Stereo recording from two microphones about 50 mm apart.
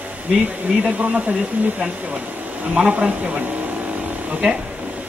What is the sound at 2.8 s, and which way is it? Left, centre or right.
Speech, centre.